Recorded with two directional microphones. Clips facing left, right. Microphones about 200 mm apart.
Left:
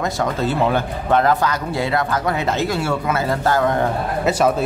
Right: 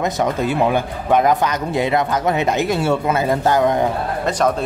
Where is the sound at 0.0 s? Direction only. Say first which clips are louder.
Right 2 dB; 15° right (ahead or behind).